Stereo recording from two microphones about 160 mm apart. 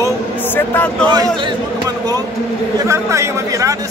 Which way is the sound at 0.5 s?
10° left (ahead or behind).